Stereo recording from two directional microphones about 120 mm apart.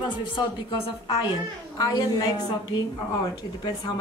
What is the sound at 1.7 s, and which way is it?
Speech, 35° left (ahead or behind).